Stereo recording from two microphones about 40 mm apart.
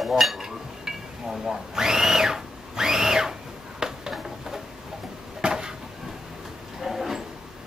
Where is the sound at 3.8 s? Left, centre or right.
Centre.